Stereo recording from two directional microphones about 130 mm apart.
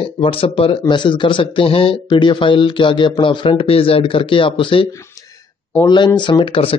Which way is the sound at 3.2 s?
40° left (ahead or behind).